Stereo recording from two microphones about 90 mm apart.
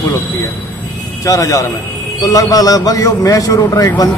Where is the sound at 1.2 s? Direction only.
40° left (ahead or behind).